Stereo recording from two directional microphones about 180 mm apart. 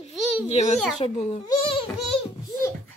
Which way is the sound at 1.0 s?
35° left (ahead or behind).